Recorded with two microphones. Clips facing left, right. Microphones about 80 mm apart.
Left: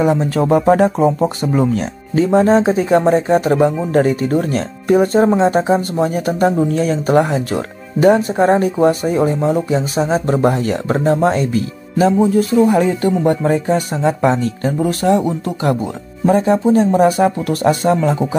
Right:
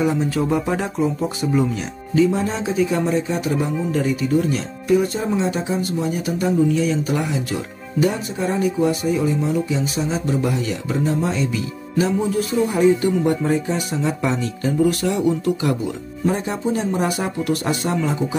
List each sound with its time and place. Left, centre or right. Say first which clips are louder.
0.3 s speech: left 8 dB; left